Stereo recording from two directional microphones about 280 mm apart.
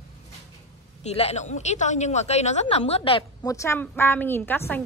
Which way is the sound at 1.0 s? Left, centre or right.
Left.